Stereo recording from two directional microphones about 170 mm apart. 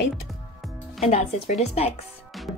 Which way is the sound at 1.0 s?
40° left (ahead or behind).